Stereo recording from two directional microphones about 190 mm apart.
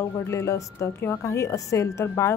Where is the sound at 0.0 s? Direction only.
15° left (ahead or behind).